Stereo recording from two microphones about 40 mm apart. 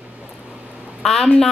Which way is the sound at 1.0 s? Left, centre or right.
Centre.